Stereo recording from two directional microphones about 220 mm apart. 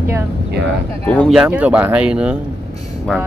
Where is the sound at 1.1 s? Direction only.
Centre (ahead or behind).